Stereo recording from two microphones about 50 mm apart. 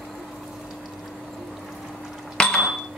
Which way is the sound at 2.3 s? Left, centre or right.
Centre.